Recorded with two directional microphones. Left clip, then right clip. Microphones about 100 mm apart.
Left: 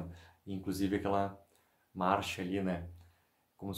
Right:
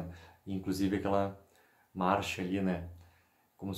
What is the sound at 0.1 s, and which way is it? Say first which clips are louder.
Speech: right 3 dB; 25° left (ahead or behind).